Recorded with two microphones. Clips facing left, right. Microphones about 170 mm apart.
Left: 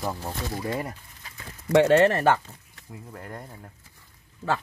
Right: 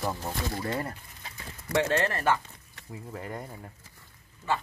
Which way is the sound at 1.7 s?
80° left.